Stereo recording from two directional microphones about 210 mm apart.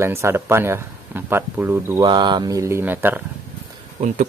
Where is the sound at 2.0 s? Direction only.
20° right (ahead or behind).